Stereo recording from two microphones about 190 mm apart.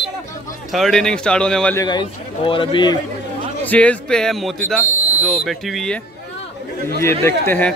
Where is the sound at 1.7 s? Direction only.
20° left (ahead or behind).